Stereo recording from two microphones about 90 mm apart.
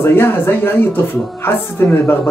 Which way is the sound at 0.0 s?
25° left (ahead or behind).